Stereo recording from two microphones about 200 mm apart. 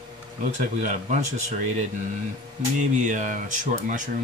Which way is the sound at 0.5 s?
35° right (ahead or behind).